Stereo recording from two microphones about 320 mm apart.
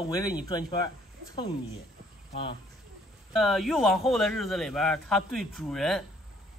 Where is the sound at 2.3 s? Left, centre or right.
Centre.